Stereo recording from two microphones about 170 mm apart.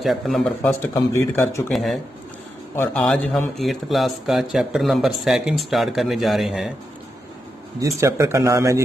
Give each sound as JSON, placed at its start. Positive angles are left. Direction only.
{"t": 0.0, "sound": "a man's voice", "side_deg": 0}
{"t": 0.6, "sound": "speech", "side_deg": 15}
{"t": 1.7, "sound": "a man's voice", "side_deg": 0}
{"t": 2.7, "sound": "a man's voice", "side_deg": 15}
{"t": 7.8, "sound": "speech", "side_deg": -15}